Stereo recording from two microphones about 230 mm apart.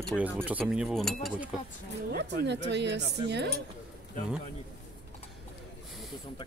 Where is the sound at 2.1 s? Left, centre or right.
Right.